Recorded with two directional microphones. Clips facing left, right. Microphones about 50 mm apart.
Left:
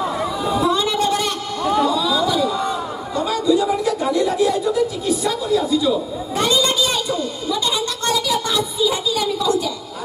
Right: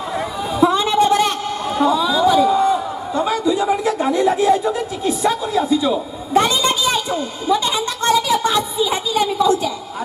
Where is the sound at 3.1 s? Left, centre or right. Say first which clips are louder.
Even; right.